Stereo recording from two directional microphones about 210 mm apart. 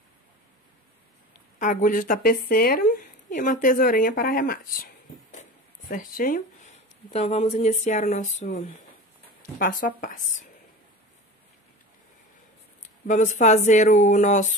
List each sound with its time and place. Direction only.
1.6 s speech: 40° left (ahead or behind)
13.0 s speech: 35° left (ahead or behind)